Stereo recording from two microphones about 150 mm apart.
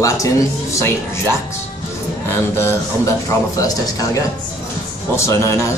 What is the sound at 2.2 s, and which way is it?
Speech, 15° left (ahead or behind).